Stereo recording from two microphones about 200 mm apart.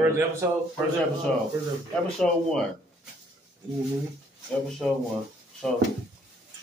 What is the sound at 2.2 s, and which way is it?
Speech, centre (ahead or behind).